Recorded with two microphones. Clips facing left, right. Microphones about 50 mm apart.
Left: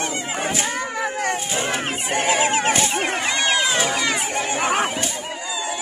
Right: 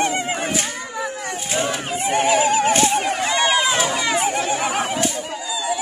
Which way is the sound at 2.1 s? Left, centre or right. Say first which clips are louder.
Right 3 dB; left.